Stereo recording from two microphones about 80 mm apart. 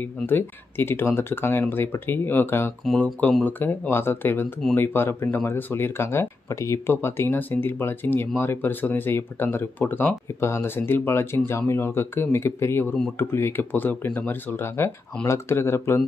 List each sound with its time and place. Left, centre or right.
0.0 s speech: left